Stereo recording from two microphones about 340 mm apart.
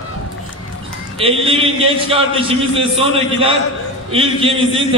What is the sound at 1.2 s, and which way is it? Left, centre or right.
A man's voice, centre.